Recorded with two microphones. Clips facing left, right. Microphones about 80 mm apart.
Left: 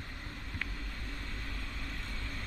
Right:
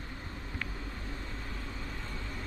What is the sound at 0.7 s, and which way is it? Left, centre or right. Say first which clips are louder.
Vehicle: right 3 dB; right.